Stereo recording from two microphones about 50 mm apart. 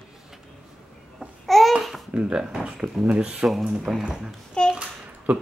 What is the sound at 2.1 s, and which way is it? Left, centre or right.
Speech, right.